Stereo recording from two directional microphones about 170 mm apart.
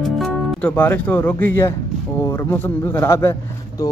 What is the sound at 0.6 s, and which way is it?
Speech, 10° left (ahead or behind).